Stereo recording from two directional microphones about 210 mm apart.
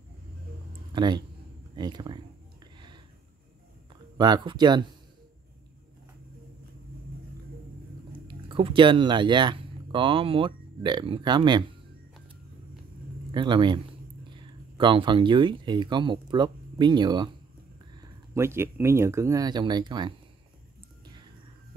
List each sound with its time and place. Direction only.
0.9 s speech: 20° right (ahead or behind)
4.2 s speech: 20° right (ahead or behind)
8.1 s speech: 25° right (ahead or behind)
13.3 s speech: 25° right (ahead or behind)